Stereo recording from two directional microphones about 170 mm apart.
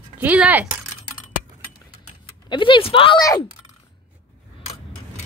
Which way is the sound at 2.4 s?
30° left (ahead or behind).